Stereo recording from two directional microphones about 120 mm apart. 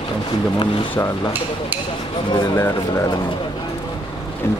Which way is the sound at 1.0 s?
25° left (ahead or behind).